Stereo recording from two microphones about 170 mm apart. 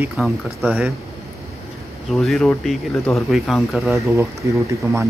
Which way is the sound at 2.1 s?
Centre (ahead or behind).